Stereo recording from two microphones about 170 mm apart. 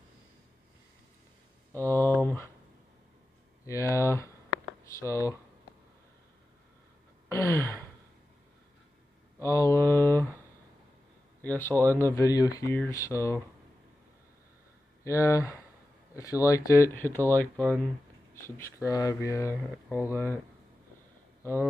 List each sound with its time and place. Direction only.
1.7 s a sound: 15° left (ahead or behind)
3.6 s speech: 20° left (ahead or behind)
7.2 s a sound: 15° left (ahead or behind)
9.4 s mantra: 20° left (ahead or behind)
11.4 s speech: 10° left (ahead or behind)
15.0 s speech: 15° left (ahead or behind)
19.5 s speech: 10° right (ahead or behind)
20.1 s speech: 15° left (ahead or behind)